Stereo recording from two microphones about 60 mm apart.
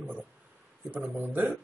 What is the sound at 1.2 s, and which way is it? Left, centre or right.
Speech, right.